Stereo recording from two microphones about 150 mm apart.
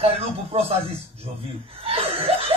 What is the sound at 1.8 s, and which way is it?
Laughter, 40° right (ahead or behind).